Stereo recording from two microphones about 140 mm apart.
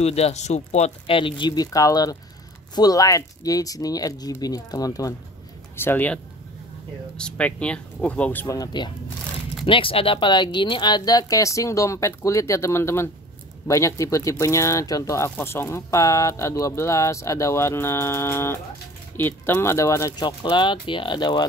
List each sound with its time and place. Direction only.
0.0 s speech: 50° left (ahead or behind); by 5.1 s 25° left (ahead or behind)
5.8 s speech: 15° left (ahead or behind)
7.2 s speech: 5° left (ahead or behind)
8.5 s speech: 30° left (ahead or behind)